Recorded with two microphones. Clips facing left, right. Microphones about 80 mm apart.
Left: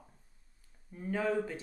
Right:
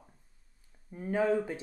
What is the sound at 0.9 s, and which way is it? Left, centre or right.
Speech, centre.